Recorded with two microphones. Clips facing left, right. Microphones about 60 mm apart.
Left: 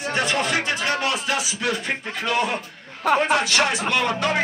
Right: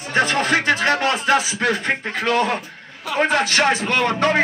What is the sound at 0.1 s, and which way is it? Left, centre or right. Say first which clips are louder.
Speech: right 5 dB; right.